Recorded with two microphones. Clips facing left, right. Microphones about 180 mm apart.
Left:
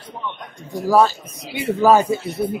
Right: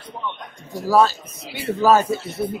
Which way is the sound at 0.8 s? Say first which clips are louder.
Left 1 dB; 15° left (ahead or behind).